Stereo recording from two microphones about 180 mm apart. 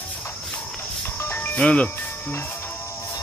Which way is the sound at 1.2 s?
10° left (ahead or behind).